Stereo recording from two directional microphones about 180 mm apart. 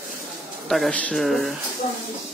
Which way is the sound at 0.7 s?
5° left (ahead or behind).